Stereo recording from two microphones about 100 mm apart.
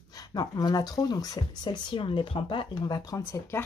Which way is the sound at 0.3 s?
40° left (ahead or behind).